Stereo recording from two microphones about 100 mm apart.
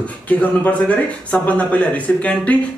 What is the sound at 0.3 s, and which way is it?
Speech, 15° left (ahead or behind).